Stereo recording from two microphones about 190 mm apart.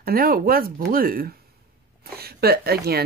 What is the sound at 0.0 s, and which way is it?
A woman's voice, 50° right (ahead or behind).